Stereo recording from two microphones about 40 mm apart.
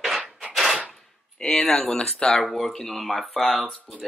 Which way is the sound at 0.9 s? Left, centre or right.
Centre.